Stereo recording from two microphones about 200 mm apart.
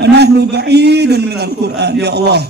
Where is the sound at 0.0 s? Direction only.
55° right (ahead or behind).